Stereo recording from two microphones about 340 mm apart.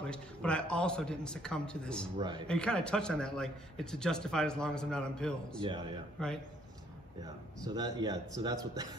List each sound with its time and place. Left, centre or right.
0.0 s a man's voice: centre
7.6 s speech: centre